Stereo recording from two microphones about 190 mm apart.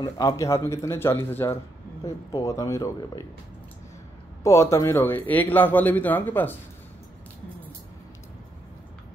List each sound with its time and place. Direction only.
0.0 s a man's voice: 20° left (ahead or behind)
4.4 s a man's voice: 15° left (ahead or behind)